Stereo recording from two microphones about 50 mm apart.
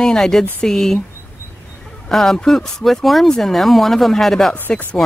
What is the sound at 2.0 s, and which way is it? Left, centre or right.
Speech, centre.